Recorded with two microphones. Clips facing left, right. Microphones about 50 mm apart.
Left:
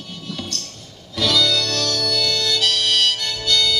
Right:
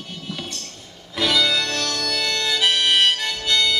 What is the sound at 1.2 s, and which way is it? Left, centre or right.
Harmonica, right.